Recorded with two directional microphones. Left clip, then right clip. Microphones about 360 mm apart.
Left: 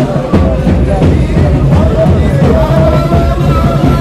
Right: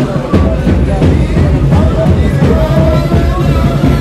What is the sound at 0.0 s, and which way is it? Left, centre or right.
Music, centre.